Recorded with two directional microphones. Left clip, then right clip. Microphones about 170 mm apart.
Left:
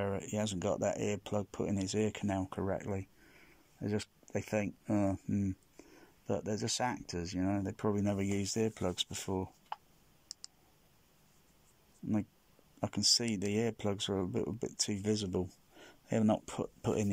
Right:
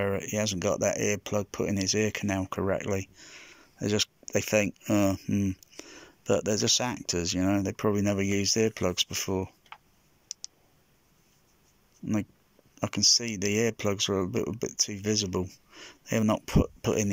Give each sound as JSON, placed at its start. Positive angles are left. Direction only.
{"t": 0.0, "sound": "speech", "side_deg": 5}
{"t": 5.8, "sound": "a sound", "side_deg": 0}
{"t": 6.4, "sound": "speech", "side_deg": 0}
{"t": 7.3, "sound": "speech", "side_deg": -15}
{"t": 7.6, "sound": "speech", "side_deg": 0}
{"t": 12.8, "sound": "speech", "side_deg": 5}